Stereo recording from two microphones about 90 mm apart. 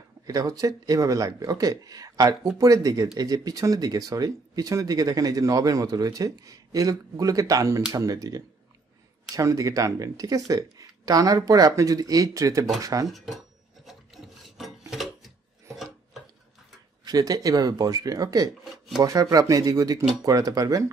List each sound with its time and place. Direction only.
0.3 s speech: 40° right (ahead or behind)
13.1 s speech: centre (ahead or behind)
13.8 s rub: centre (ahead or behind)
15.7 s filing: centre (ahead or behind)
17.0 s speech: 45° right (ahead or behind)